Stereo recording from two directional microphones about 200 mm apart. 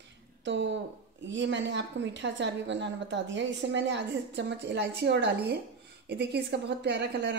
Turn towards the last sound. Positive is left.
turn(degrees=-60)  # may be behind; listen again after turning